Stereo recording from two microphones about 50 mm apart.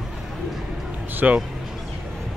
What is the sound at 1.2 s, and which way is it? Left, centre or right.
Speech, right.